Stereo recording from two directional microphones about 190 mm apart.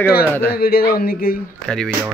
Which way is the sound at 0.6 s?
50° left (ahead or behind).